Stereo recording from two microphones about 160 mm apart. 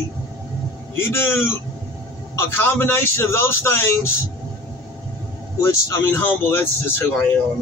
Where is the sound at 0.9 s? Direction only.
15° left (ahead or behind).